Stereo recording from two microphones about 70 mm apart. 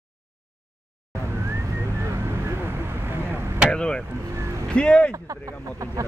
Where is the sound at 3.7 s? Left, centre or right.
Centre.